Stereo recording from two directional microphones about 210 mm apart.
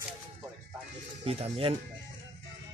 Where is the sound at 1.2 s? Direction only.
30° right (ahead or behind).